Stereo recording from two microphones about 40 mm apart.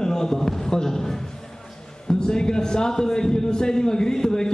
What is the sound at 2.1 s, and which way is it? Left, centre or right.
A man's voice, centre.